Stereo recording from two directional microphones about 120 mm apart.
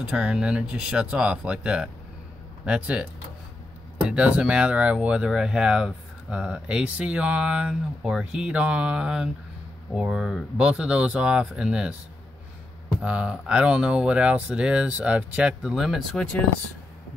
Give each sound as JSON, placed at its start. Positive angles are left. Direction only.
{"t": 0.0, "sound": "speech", "side_deg": -10}
{"t": 4.1, "sound": "speech", "side_deg": -10}
{"t": 13.0, "sound": "speech", "side_deg": -10}